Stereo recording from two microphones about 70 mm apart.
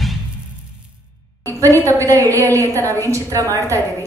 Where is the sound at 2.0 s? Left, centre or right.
Right.